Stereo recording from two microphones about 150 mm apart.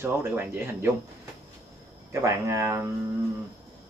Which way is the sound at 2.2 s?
20° right (ahead or behind).